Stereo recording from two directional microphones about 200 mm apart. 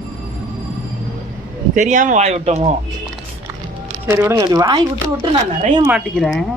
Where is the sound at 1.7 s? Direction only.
40° right (ahead or behind).